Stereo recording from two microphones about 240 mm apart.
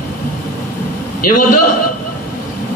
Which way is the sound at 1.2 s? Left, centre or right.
Left.